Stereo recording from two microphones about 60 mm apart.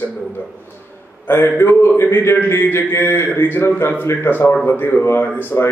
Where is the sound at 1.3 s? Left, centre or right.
Left.